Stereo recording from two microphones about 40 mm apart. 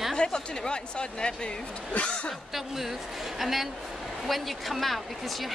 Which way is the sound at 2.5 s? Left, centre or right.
Centre.